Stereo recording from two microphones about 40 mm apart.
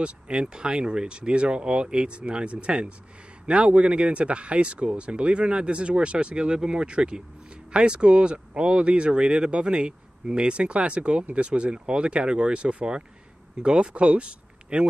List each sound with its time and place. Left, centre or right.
0.0 s speech: right